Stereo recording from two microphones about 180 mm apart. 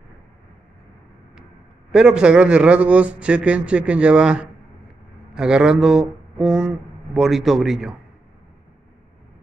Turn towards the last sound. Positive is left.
turn(degrees=0)  # may be behind; listen again after turning